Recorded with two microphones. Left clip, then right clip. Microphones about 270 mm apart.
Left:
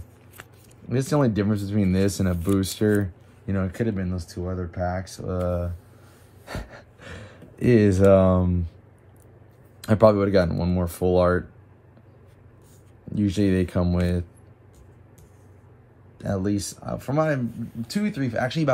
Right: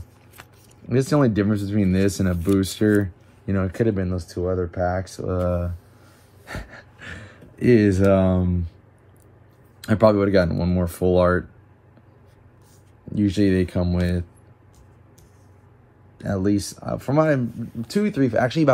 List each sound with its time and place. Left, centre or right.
0.4 s speech: centre
2.3 s speech: centre
4.4 s speech: centre
4.9 s speech: centre
6.4 s gasp: centre
7.1 s speech: centre
9.8 s speech: left
13.1 s speech: left
16.2 s speech: centre